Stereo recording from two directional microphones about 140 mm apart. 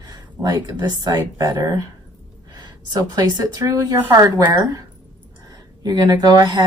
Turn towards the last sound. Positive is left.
turn(degrees=-30)  # may be behind; listen again after turning